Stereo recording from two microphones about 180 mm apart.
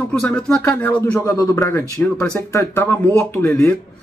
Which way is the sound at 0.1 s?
5° left (ahead or behind).